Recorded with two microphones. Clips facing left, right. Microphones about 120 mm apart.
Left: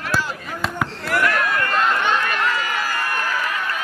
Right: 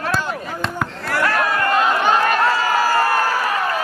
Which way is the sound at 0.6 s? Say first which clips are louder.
Left 2 dB; centre (ahead or behind).